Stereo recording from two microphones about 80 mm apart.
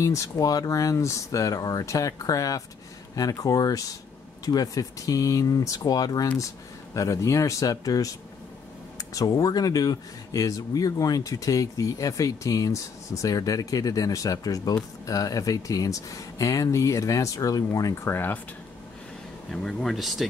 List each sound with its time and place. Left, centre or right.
0.0 s speech: left
18.0 s speech: left
19.5 s speech: centre